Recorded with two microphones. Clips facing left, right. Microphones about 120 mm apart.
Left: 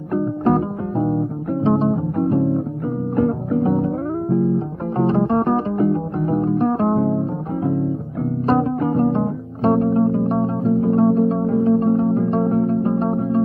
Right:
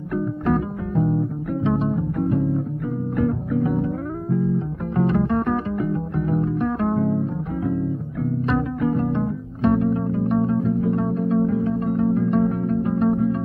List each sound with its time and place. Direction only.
0.1 s music: 35° left (ahead or behind)